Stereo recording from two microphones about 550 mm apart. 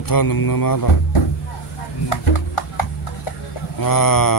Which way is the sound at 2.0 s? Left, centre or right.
Left.